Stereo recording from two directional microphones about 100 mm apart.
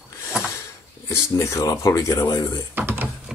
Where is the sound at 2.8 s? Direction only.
20° right (ahead or behind).